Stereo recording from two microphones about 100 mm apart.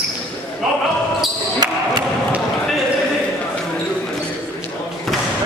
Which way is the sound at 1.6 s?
40° right (ahead or behind).